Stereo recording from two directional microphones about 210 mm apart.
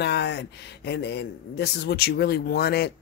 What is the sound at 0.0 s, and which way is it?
A man's voice, 55° left (ahead or behind).